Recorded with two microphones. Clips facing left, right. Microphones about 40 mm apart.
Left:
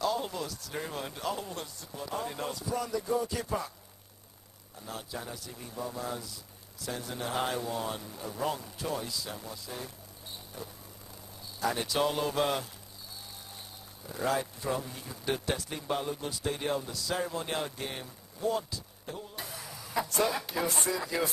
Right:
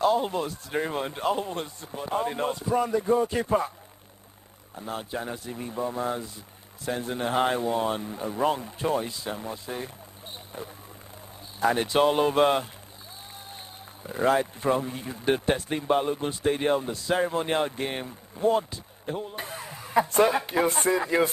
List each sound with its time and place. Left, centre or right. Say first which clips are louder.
0.0 s speech: right 8 dB; right
4.7 s speech: right 7 dB; right
11.6 s speech: right 7 dB; right
14.0 s speech: right 8 dB; right